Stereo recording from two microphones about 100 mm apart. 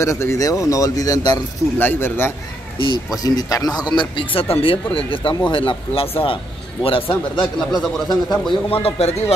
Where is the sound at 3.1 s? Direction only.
40° left (ahead or behind); by 7.1 s 65° left (ahead or behind).